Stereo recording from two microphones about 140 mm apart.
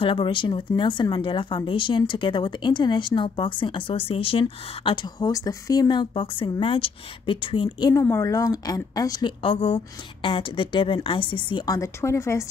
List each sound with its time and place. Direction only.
0.0 s speech: 35° left (ahead or behind)
7.9 s a woman's voice: 20° left (ahead or behind)